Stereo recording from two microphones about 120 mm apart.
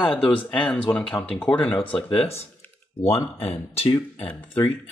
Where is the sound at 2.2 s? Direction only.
60° left (ahead or behind).